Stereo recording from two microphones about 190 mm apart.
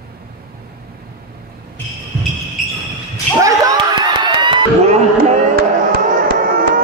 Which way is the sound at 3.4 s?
15° right (ahead or behind).